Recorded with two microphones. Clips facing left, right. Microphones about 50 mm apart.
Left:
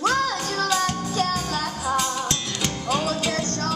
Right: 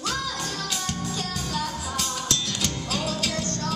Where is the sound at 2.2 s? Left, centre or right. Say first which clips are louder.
Left 1 dB; left.